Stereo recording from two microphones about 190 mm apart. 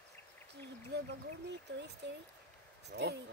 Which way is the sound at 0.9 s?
60° right (ahead or behind).